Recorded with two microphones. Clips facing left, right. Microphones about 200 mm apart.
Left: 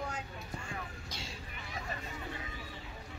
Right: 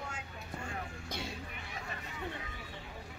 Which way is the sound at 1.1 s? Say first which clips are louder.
Right 5 dB; 60° right (ahead or behind).